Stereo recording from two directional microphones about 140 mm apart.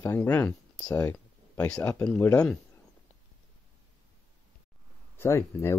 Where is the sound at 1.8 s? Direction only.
15° left (ahead or behind).